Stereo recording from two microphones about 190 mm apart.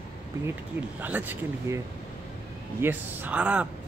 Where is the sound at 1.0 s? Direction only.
10° right (ahead or behind).